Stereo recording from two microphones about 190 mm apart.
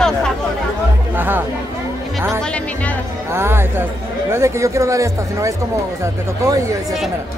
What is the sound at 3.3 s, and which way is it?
A man's voice, 10° right (ahead or behind).